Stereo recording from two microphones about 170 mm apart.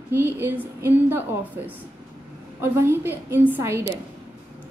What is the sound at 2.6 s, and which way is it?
A woman's voice, 15° right (ahead or behind).